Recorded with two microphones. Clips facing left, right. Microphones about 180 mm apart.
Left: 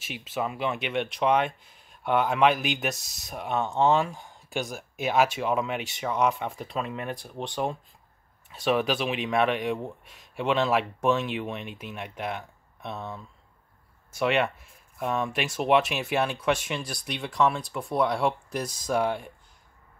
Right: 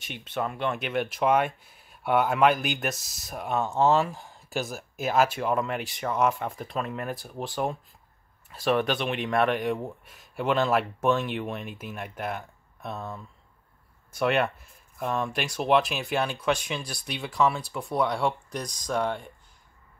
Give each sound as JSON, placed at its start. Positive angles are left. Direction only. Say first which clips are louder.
{"t": 0.0, "sound": "speech", "louder": "even", "side_deg": 5}